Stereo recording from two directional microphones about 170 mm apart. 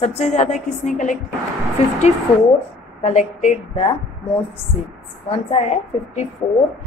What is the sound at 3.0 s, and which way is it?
Speech, 45° left (ahead or behind).